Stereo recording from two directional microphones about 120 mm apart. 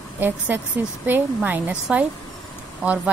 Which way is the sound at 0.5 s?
15° right (ahead or behind).